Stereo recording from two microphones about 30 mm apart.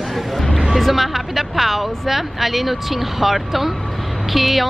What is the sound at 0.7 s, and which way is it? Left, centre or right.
A woman's voice, centre.